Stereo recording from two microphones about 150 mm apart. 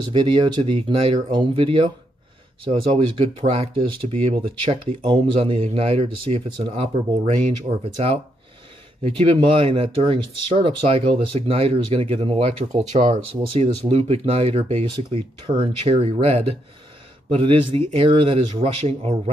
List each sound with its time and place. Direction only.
0.1 s speech: 35° right (ahead or behind); by 7.8 s 50° right (ahead or behind)
9.0 s speech: 35° right (ahead or behind)